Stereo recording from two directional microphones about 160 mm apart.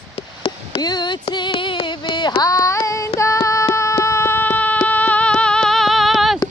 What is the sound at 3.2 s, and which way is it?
Baby cry, 20° left (ahead or behind).